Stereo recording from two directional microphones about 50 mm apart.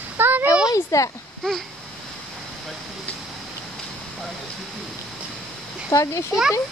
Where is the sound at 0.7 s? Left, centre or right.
Left.